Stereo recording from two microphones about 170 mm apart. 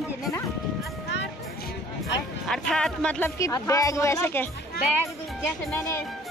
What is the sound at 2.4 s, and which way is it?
Speech, 5° left (ahead or behind).